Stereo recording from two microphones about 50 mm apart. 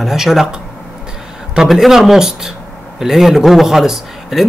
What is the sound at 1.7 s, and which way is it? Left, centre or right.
Speech, centre.